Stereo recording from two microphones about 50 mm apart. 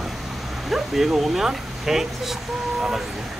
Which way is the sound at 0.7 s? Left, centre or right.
Centre.